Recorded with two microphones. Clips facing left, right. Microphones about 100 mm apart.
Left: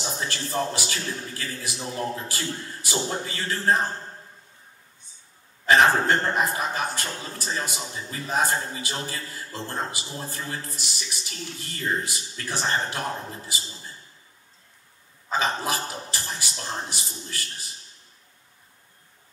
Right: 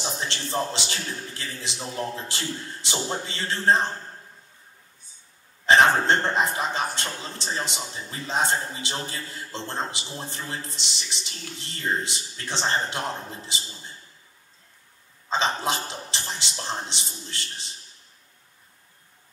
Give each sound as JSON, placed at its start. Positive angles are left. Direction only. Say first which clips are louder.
{"t": 0.0, "sound": "a man's voice", "louder": "even", "side_deg": -25}
{"t": 5.7, "sound": "a man's voice", "louder": "right 1 dB", "side_deg": -25}
{"t": 15.2, "sound": "a man's voice", "louder": "right 1 dB", "side_deg": -25}